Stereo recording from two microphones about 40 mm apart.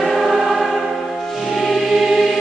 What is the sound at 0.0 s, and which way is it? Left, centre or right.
Choir, centre.